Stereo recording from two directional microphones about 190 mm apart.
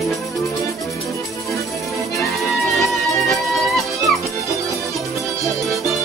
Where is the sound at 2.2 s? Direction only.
Centre (ahead or behind).